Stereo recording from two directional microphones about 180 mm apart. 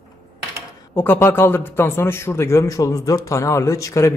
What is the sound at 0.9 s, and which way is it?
A man's voice, 15° left (ahead or behind).